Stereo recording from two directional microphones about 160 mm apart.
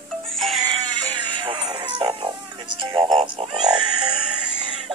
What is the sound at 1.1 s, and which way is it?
Music, 30° right (ahead or behind).